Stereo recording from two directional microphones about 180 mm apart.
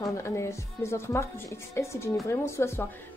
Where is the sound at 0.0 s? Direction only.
15° left (ahead or behind).